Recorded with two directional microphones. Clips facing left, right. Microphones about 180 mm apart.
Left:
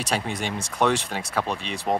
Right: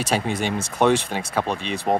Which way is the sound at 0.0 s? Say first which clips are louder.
Right 4 dB; 5° right (ahead or behind).